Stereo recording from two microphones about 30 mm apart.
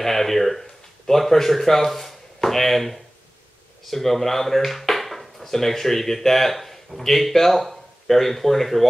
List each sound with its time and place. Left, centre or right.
0.0 s a man's voice: centre